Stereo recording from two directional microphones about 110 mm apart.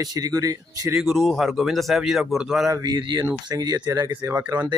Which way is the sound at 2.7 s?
40° right (ahead or behind).